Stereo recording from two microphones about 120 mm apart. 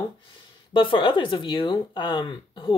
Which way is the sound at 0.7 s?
45° left (ahead or behind).